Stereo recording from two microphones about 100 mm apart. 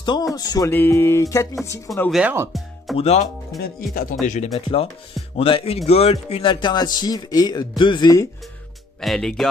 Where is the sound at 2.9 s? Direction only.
90° left.